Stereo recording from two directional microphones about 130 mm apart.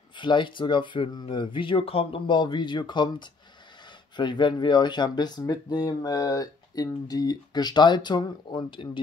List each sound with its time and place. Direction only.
0.2 s speech: 40° left (ahead or behind)